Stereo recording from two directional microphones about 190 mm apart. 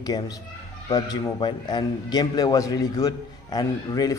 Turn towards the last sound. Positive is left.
turn(degrees=20)  # may be behind; listen again after turning